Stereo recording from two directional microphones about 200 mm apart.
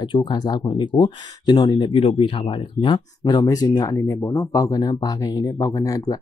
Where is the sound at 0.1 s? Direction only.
20° left (ahead or behind).